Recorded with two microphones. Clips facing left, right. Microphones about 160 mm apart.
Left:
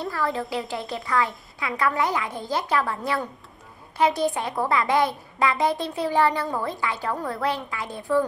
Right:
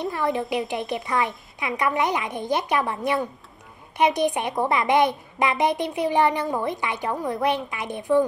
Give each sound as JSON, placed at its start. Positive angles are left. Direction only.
{"t": 0.0, "sound": "a woman's voice", "side_deg": -20}